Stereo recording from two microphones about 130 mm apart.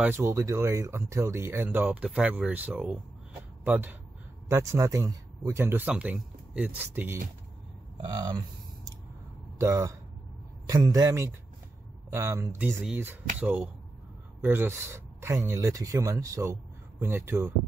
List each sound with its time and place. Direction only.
0.0 s speech: 20° right (ahead or behind)
8.0 s a sound: 35° right (ahead or behind)
9.6 s speech: 25° right (ahead or behind)